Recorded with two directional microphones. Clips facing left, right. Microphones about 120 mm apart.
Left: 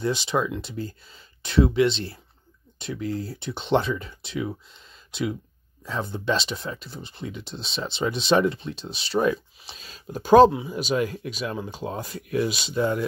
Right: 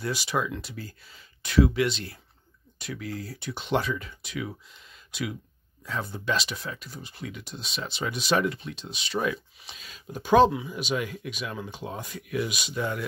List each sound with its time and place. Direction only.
0.0 s speech: 25° left (ahead or behind)